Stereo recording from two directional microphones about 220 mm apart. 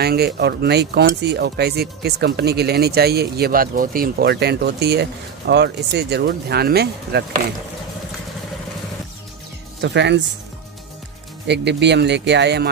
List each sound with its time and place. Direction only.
0.0 s speech: 45° right (ahead or behind)
9.8 s speech: 50° right (ahead or behind)
11.4 s speech: 50° right (ahead or behind)